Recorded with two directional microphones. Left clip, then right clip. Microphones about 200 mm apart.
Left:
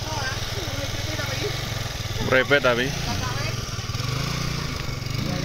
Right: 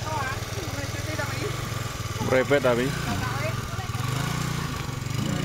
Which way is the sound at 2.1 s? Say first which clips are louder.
Left 3 dB; 10° right (ahead or behind).